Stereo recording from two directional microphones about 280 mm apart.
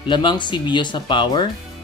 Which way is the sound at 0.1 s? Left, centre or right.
Centre.